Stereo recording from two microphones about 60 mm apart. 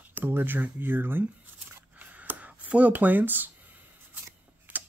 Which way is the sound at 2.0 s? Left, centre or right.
Right.